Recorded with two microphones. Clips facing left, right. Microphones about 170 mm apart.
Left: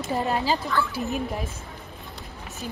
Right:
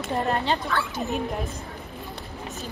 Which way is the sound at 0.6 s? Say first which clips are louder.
Left 1 dB; 65° right (ahead or behind).